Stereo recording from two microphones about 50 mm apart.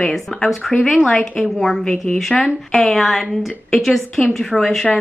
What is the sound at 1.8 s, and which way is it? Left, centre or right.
Speech, centre.